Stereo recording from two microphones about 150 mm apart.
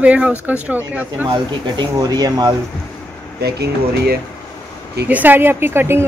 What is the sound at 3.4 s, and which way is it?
Speech, 90° right.